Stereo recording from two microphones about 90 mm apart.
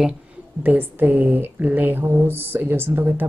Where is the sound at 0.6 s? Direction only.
20° right (ahead or behind).